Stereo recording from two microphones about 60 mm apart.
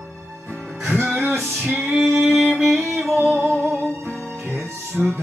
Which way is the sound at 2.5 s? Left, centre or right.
Centre.